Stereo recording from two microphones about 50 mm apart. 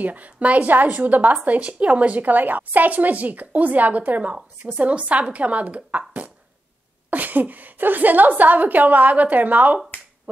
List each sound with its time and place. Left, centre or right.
0.0 s a woman's voice: right